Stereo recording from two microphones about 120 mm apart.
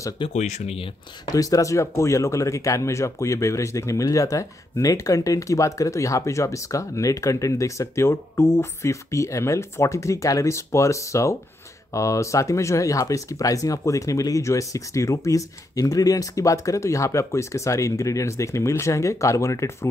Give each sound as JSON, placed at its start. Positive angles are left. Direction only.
{"t": 0.3, "sound": "speech", "side_deg": 70}
{"t": 1.2, "sound": "speech", "side_deg": 30}